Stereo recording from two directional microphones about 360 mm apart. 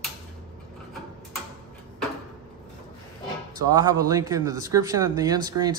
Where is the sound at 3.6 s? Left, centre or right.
Centre.